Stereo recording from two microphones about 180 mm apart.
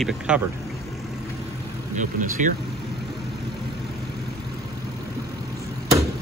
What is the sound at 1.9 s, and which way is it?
Speech, 45° right (ahead or behind).